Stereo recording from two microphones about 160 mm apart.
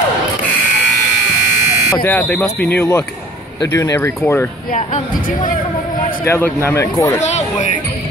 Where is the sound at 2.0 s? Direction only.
10° left (ahead or behind).